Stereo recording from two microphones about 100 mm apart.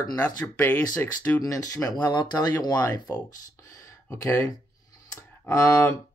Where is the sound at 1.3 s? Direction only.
35° left (ahead or behind).